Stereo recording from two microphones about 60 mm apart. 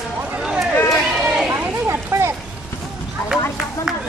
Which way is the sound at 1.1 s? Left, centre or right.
Centre.